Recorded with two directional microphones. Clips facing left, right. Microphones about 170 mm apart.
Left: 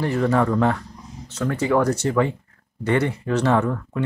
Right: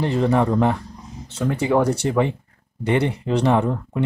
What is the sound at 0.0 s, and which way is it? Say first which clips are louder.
Speech: right 1 dB; 20° right (ahead or behind).